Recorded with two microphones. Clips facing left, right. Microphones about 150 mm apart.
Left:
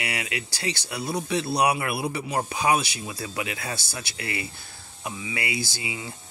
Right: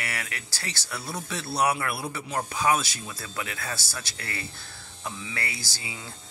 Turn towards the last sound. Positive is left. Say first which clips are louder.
# left 8 dB
turn(degrees=15)  # may be behind; listen again after turning